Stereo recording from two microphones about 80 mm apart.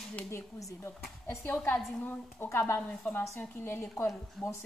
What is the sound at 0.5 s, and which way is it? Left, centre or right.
A woman's voice, left.